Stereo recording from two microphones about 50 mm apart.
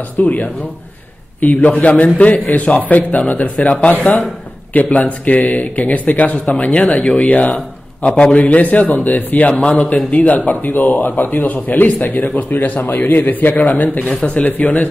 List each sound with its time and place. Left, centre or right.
0.2 s speech: left